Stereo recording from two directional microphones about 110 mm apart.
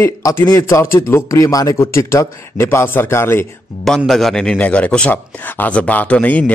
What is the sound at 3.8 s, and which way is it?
A man's voice, 5° left (ahead or behind).